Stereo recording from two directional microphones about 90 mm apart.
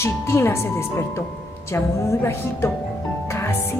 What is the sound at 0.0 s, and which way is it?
A woman's voice, 30° left (ahead or behind).